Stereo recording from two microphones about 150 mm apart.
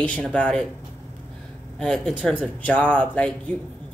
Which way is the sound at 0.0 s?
10° left (ahead or behind).